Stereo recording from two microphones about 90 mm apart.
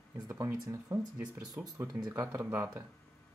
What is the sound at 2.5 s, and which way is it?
Speech, 30° right (ahead or behind).